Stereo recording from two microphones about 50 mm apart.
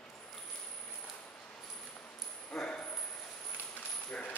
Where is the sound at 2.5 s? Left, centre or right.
Centre.